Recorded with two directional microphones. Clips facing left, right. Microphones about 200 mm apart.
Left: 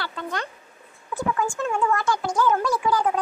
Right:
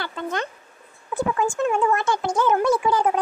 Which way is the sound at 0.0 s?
20° right (ahead or behind).